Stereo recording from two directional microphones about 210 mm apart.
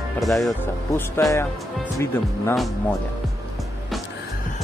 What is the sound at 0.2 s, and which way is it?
Speech, centre (ahead or behind).